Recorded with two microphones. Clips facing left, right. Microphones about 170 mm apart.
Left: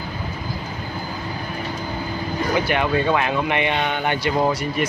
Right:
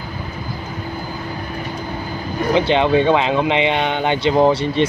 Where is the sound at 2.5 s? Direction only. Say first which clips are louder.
Right 6 dB; 25° right (ahead or behind).